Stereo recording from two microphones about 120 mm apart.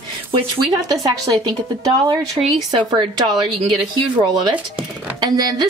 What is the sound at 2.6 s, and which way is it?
Speech, 35° right (ahead or behind).